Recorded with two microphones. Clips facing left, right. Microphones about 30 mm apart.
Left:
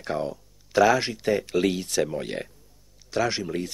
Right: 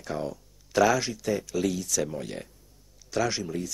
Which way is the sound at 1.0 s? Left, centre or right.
Left.